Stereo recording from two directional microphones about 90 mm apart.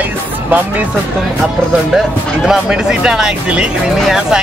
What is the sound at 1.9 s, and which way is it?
Speech, 5° right (ahead or behind).